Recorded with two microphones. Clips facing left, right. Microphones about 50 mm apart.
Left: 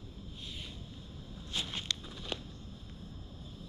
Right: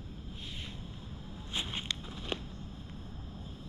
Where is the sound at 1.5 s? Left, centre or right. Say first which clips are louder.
Right 1 dB; right.